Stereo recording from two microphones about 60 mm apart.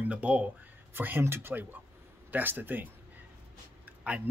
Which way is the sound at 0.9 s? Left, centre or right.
Right.